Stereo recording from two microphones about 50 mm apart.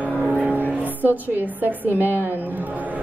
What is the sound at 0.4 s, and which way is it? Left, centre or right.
A woman's voice, right.